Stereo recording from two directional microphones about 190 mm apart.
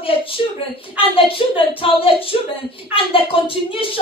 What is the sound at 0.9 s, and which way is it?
A woman's voice, 30° left (ahead or behind).